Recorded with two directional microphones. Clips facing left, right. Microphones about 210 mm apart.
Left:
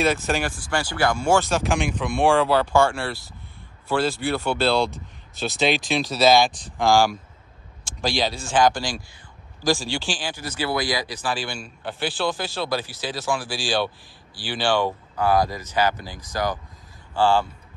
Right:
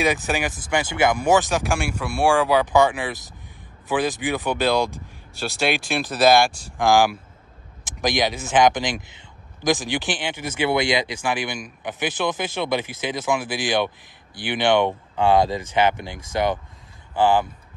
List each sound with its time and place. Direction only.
0.0 s a man's voice: 15° right (ahead or behind)